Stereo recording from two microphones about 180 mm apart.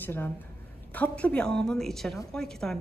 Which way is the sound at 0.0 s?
10° left (ahead or behind).